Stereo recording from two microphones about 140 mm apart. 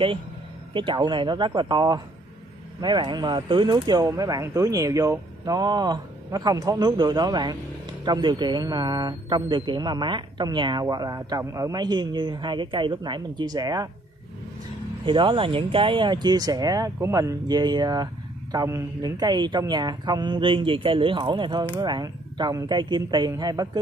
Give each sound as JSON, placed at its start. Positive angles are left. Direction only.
{"t": 0.7, "sound": "speech", "side_deg": -35}
{"t": 15.0, "sound": "speech", "side_deg": -35}